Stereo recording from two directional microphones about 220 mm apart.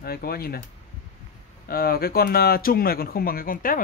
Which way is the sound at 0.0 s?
45° left (ahead or behind).